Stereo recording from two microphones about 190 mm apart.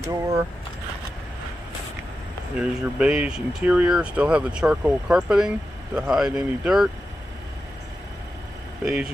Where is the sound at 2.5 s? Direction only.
5° right (ahead or behind).